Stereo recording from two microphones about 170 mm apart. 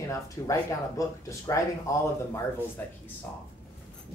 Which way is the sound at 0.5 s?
20° left (ahead or behind).